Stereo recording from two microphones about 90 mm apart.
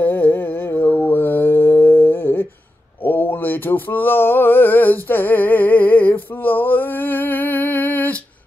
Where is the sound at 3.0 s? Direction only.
20° left (ahead or behind).